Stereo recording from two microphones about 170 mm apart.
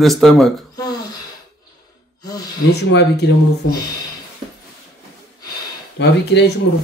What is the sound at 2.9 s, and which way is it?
Speech, 75° left (ahead or behind).